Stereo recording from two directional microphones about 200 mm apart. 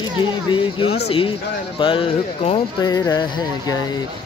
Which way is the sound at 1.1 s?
25° left (ahead or behind).